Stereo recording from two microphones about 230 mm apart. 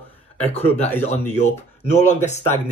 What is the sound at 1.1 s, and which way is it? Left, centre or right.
Speech, left.